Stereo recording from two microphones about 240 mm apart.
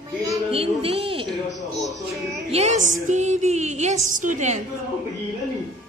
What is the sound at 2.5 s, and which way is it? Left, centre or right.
Music, right.